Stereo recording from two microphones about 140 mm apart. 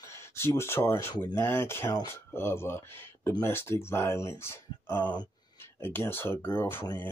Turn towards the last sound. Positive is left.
turn(degrees=15)  # may be behind; listen again after turning